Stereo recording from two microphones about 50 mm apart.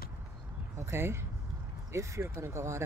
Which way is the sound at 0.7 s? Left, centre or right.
Right.